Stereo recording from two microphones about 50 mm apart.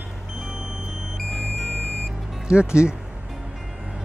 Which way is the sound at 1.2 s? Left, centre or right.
Centre.